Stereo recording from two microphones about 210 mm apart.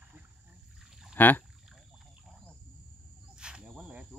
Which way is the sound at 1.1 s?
10° left (ahead or behind).